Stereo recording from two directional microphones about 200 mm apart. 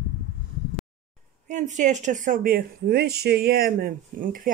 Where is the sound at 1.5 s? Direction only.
35° right (ahead or behind).